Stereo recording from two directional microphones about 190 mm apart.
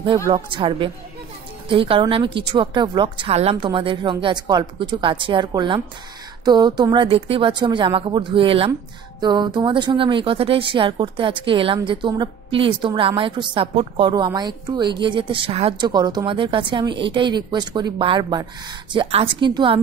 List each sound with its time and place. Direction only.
0.3 s a woman's voice: 25° right (ahead or behind)